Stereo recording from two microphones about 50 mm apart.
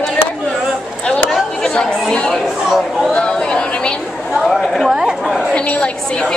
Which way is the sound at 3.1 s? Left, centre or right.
Left.